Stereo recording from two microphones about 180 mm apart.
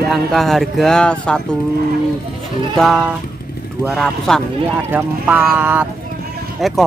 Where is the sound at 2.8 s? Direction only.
Centre (ahead or behind).